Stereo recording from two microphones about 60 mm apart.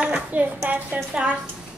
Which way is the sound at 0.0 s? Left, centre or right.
Right.